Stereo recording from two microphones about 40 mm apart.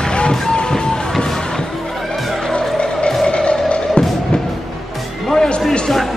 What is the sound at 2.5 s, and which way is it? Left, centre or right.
Music, left.